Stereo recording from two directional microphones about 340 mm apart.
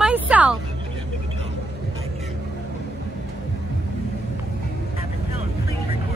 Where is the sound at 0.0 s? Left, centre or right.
Centre.